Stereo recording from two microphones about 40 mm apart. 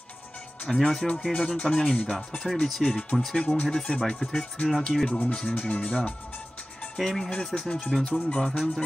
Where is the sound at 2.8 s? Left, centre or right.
Left.